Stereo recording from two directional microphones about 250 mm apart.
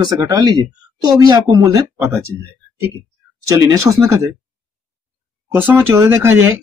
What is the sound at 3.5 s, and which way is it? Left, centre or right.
Speech, centre.